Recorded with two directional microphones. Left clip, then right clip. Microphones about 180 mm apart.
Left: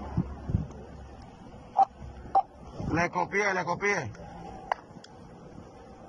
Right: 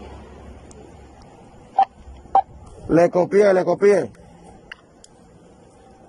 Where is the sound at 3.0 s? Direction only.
90° right.